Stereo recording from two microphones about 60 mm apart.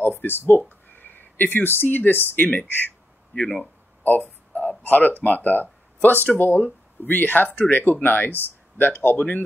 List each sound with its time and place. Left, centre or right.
0.0 s speech: left
4.0 s a sound: left
5.2 s speech: left